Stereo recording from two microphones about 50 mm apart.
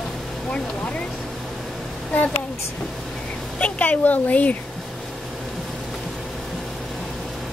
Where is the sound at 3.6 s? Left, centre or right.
Left.